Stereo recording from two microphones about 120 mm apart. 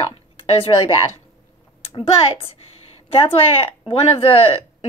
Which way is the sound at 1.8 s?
50° left (ahead or behind).